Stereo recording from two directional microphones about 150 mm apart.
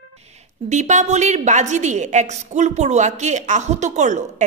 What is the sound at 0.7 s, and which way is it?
A woman's voice, 50° right (ahead or behind).